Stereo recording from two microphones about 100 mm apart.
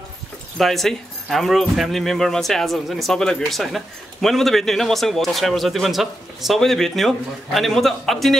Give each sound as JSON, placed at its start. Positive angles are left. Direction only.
{"t": 0.6, "sound": "speech", "side_deg": 0}